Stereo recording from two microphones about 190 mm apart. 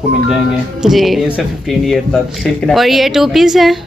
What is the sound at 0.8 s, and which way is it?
A woman's voice, centre (ahead or behind).